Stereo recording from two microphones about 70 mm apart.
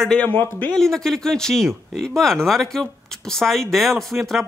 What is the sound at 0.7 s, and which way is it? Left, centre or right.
Speech, centre.